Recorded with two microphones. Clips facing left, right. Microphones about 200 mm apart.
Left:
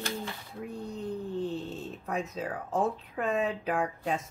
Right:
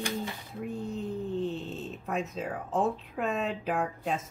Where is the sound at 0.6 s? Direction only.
Centre (ahead or behind).